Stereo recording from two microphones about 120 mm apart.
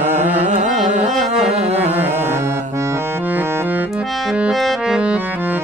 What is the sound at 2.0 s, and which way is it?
Accordion, 20° right (ahead or behind).